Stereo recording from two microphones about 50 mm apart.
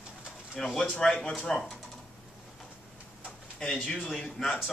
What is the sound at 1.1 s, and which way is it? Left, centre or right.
Speech, left.